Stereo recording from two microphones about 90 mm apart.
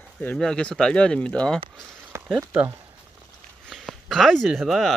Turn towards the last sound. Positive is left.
turn(degrees=-5)  # may be behind; listen again after turning